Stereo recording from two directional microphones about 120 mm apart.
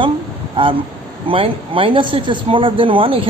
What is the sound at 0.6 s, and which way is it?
Speech, 50° right (ahead or behind).